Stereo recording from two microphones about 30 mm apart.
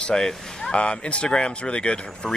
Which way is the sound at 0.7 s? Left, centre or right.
Left.